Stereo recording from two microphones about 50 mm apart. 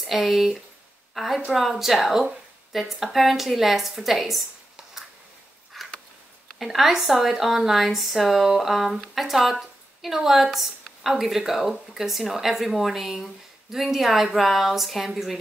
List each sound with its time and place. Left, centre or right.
0.0 s a woman's voice: centre
5.7 s a sound: centre
6.6 s a woman's voice: centre